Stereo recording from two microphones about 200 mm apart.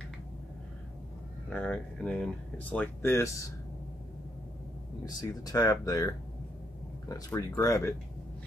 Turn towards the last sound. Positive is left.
turn(degrees=15)  # may be behind; listen again after turning